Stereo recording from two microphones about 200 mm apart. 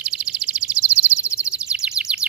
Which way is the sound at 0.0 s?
5° right (ahead or behind).